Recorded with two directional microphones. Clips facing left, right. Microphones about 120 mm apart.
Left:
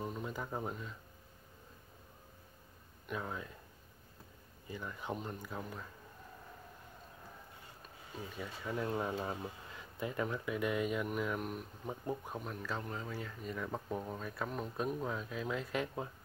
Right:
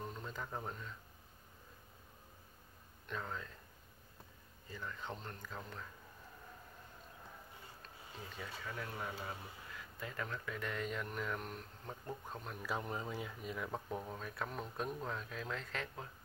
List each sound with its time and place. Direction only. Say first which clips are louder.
0.0 s speech: left 5 dB; 10° left (ahead or behind)
3.1 s speech: left 3 dB; 10° left (ahead or behind)
4.6 s speech: left 4 dB; 15° left (ahead or behind)
8.4 s speech: left 7 dB; 20° left (ahead or behind)
12.6 s speech: right 5 dB; 15° right (ahead or behind)
13.4 s speech: left 2 dB; 5° right (ahead or behind); by 16.1 s 15° left (ahead or behind)